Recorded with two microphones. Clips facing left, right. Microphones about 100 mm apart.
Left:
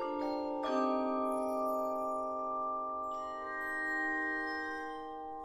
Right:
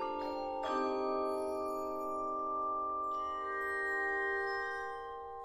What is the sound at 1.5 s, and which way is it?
Glockenspiel, 35° left (ahead or behind).